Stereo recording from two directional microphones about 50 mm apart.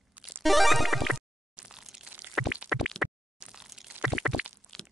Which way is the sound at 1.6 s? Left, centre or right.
Right.